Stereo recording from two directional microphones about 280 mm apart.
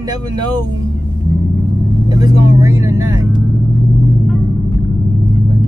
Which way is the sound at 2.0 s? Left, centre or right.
Centre.